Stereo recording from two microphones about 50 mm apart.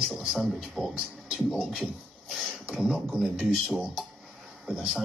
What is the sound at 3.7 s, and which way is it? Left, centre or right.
Speech, right.